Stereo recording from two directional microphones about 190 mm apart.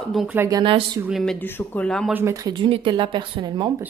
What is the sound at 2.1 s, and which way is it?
Speech, 15° right (ahead or behind).